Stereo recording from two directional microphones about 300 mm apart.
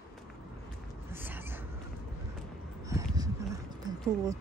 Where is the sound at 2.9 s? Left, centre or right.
Centre.